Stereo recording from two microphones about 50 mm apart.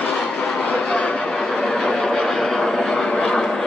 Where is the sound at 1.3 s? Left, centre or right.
Centre.